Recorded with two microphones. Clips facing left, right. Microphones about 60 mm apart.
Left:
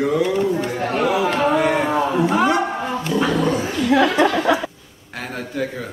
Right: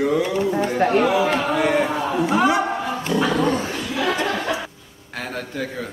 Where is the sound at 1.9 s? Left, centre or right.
Centre.